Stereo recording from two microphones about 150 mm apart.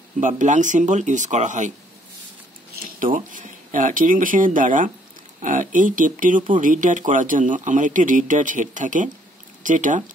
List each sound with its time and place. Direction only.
0.2 s speech: 55° right (ahead or behind)
3.2 s speech: 60° right (ahead or behind)